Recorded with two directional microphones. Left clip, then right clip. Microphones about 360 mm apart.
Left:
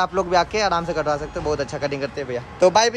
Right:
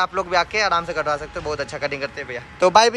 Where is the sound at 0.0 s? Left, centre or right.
Centre.